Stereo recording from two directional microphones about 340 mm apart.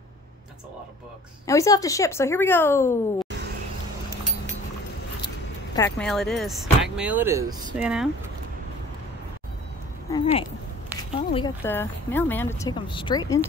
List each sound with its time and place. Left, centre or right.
1.5 s speech: centre
5.8 s speech: centre
10.1 s speech: centre